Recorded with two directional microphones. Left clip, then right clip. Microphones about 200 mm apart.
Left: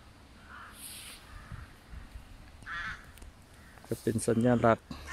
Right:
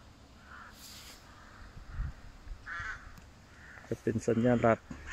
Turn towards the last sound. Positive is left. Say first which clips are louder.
# left 1 dB
turn(degrees=5)  # may be behind; listen again after turning